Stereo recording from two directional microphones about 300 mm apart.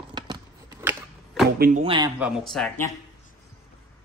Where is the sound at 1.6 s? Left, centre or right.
Right.